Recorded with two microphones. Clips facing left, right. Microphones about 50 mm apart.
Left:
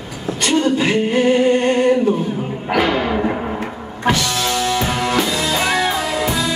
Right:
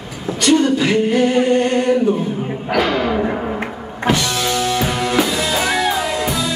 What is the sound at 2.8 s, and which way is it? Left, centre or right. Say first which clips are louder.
Music: even; centre.